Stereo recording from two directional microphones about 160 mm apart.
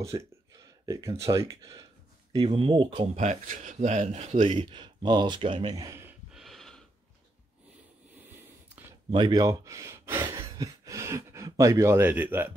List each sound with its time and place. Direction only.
0.0 s speech: 20° right (ahead or behind)
2.3 s speech: 35° right (ahead or behind)
3.2 s speech: 50° right (ahead or behind)
4.6 s speech: 30° right (ahead or behind)
5.8 s speech: 20° right (ahead or behind)
6.3 s gasp: centre (ahead or behind)
8.2 s a sound: 10° right (ahead or behind)
9.1 s speech: 25° right (ahead or behind)
10.3 s a sound: 20° right (ahead or behind)